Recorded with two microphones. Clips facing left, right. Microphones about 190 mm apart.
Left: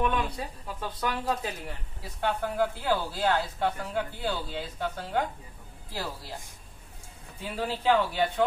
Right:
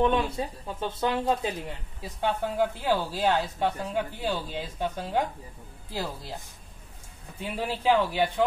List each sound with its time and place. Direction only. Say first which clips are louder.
0.0 s speech: right 4 dB; 25° right (ahead or behind)
7.4 s a man's voice: right 1 dB; 15° right (ahead or behind)